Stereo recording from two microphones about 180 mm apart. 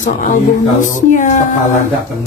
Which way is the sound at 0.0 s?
45° left (ahead or behind).